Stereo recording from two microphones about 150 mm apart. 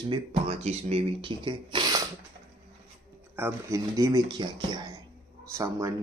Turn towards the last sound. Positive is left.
turn(degrees=-20)  # may be behind; listen again after turning